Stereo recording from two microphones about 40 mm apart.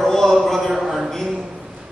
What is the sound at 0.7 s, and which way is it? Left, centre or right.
Speech, centre.